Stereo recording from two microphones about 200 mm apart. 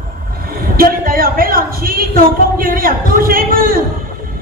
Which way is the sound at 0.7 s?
45° right (ahead or behind).